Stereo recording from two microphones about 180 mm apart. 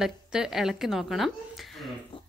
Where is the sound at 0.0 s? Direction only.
5° right (ahead or behind).